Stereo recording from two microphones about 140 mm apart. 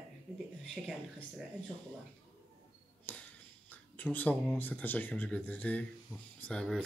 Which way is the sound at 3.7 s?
10° left (ahead or behind).